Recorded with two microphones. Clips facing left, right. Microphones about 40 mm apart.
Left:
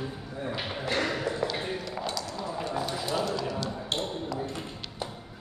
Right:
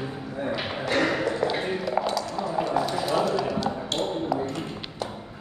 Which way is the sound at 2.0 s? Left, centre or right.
Centre.